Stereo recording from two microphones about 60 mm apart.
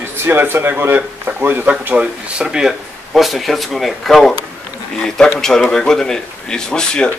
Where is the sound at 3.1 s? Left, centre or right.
Centre.